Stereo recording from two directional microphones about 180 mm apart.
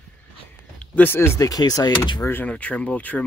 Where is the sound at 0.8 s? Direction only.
10° left (ahead or behind).